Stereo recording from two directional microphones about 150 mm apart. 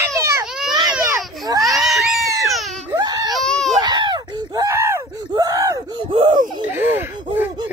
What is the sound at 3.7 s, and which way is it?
Screaming, 30° right (ahead or behind).